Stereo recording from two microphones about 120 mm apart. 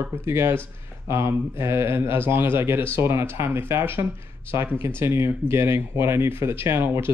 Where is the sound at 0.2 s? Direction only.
20° right (ahead or behind).